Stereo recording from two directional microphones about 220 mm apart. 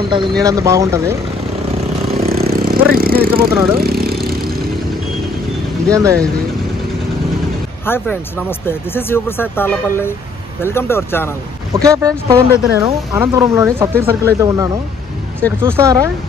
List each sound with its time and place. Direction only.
0.4 s speech: 15° right (ahead or behind)
2.2 s vehicle: 45° right (ahead or behind)
5.9 s speech: 15° right (ahead or behind)
7.8 s speech: 10° left (ahead or behind)
11.7 s speech: 15° right (ahead or behind)